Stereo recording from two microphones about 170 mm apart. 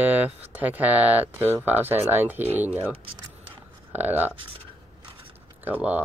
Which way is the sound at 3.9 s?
10° right (ahead or behind).